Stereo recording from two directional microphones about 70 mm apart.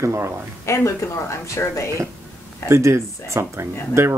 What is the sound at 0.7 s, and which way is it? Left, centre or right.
Speech, left.